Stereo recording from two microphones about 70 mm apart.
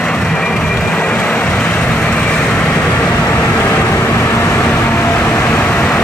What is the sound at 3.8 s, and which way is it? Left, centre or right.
Vehicle, left.